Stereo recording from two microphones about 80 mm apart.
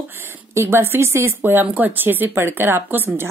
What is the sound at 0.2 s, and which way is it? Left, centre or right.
Speech, right.